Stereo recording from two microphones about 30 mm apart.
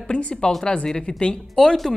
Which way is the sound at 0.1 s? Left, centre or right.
Left.